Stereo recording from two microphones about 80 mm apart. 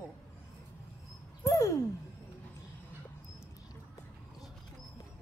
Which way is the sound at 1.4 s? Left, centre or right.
Left.